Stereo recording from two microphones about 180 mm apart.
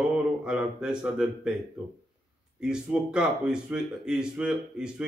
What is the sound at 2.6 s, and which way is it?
Speech, 5° right (ahead or behind).